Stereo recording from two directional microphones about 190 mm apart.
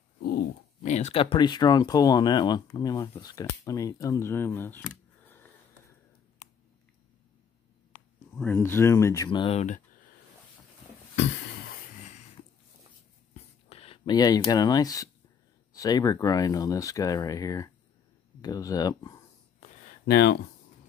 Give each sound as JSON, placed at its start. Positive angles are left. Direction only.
{"t": 0.2, "sound": "dog", "side_deg": 55}
{"t": 0.8, "sound": "speech", "side_deg": 35}
{"t": 8.4, "sound": "speech", "side_deg": 10}
{"t": 13.3, "sound": "a sound", "side_deg": 30}
{"t": 14.5, "sound": "speech", "side_deg": 20}
{"t": 20.1, "sound": "speech", "side_deg": 60}